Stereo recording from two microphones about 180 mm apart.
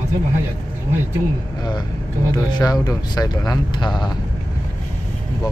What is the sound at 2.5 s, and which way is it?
Speech, 20° left (ahead or behind).